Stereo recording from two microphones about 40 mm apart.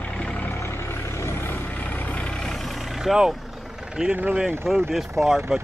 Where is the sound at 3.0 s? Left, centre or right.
Centre.